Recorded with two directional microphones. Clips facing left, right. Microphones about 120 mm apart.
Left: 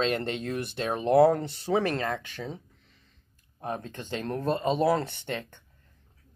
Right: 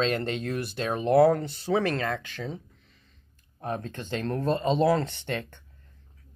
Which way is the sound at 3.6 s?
15° left (ahead or behind).